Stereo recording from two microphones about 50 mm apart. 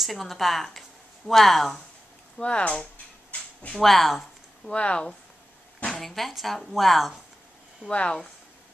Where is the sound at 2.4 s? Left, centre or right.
Left.